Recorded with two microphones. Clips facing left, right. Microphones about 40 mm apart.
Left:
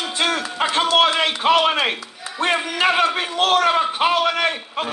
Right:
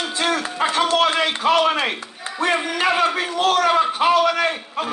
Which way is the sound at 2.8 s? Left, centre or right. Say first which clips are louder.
Left 2 dB; left.